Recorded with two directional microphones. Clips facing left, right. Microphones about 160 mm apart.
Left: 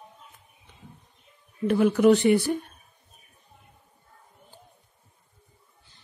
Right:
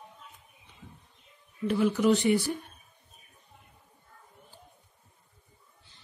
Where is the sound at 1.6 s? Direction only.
55° left (ahead or behind).